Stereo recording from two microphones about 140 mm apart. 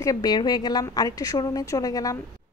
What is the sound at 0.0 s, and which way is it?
A woman's voice, 25° left (ahead or behind).